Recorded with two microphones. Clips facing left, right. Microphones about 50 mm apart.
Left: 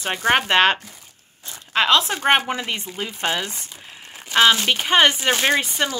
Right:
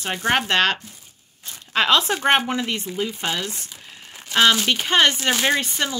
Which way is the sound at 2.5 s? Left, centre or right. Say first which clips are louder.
Right 1 dB; centre.